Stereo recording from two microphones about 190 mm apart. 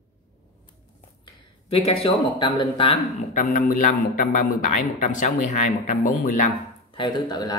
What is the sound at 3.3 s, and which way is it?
A man's voice, 45° left (ahead or behind).